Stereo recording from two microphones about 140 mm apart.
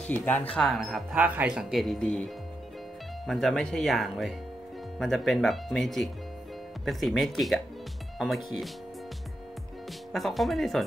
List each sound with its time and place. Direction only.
0.0 s speech: 10° left (ahead or behind)
0.6 s speech: centre (ahead or behind)
3.3 s speech: centre (ahead or behind)
10.1 s speech: centre (ahead or behind)